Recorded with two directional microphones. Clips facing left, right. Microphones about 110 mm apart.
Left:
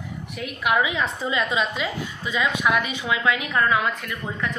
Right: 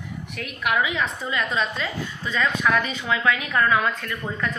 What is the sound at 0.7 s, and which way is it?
A woman's voice, 10° left (ahead or behind).